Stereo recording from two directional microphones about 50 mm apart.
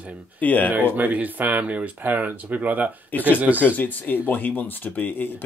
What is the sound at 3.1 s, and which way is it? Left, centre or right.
Speech, left.